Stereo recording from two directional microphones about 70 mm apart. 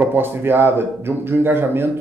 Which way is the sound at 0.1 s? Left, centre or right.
Right.